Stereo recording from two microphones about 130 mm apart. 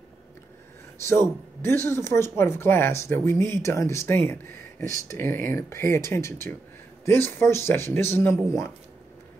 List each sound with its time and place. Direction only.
1.7 s speech: 20° left (ahead or behind)